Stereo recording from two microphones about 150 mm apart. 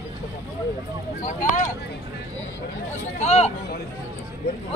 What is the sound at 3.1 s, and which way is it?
Speech, 45° left (ahead or behind).